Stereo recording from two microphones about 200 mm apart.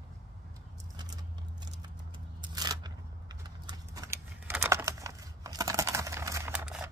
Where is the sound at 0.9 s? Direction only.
20° right (ahead or behind).